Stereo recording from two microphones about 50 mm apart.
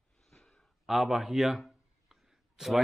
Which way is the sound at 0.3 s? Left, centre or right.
Centre.